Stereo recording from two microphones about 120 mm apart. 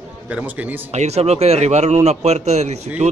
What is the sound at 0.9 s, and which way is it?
A man's voice, 65° right (ahead or behind).